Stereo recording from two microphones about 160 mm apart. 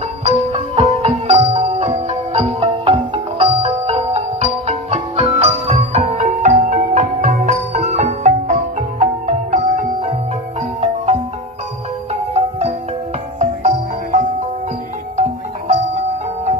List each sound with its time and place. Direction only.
0.2 s music: 45° right (ahead or behind)
12.1 s music: 40° right (ahead or behind)